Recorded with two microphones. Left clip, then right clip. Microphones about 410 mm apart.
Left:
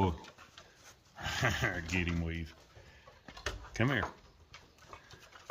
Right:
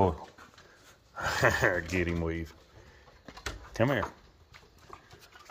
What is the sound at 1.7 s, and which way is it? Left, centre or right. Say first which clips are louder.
Speech: right 6 dB; centre.